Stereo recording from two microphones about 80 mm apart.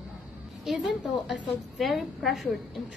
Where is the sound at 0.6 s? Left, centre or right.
Centre.